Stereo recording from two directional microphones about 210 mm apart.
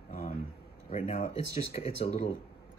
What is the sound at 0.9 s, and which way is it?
Speech, 30° left (ahead or behind).